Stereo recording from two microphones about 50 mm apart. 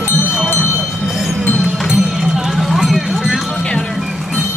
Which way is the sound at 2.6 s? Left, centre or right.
Centre.